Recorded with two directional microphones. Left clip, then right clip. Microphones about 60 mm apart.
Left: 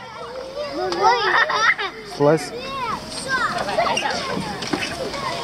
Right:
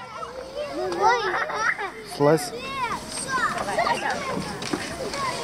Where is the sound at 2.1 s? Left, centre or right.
Right.